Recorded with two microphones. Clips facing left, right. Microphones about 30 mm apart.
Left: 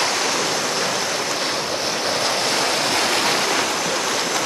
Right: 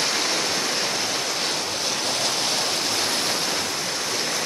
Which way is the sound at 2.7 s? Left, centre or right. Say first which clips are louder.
Left 5 dB; left.